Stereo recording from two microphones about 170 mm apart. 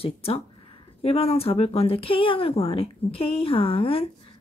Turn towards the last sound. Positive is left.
turn(degrees=35)  # may be behind; listen again after turning